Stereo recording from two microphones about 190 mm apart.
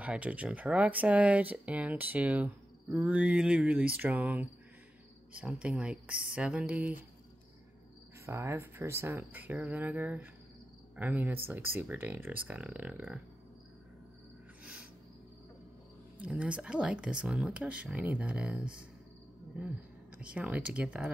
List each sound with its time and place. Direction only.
0.0 s speech: 5° right (ahead or behind)
8.3 s speech: 15° right (ahead or behind)
14.6 s cricket: 5° right (ahead or behind)
16.2 s speech: 5° right (ahead or behind)